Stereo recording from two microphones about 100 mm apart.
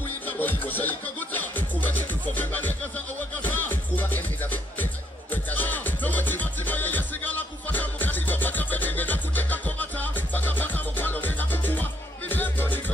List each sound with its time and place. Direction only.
0.4 s music: 20° left (ahead or behind)